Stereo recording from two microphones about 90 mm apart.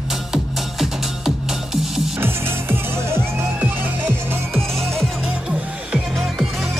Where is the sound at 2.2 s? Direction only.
25° right (ahead or behind).